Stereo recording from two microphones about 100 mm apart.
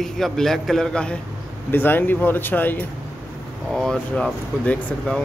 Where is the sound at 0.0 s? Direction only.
5° left (ahead or behind).